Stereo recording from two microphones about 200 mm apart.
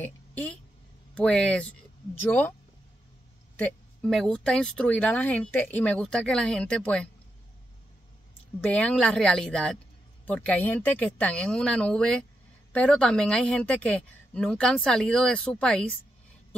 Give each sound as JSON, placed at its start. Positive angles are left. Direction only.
{"t": 0.0, "sound": "a sound", "side_deg": 5}
{"t": 1.1, "sound": "speech", "side_deg": 5}
{"t": 3.5, "sound": "speech", "side_deg": 5}
{"t": 8.5, "sound": "speech", "side_deg": 5}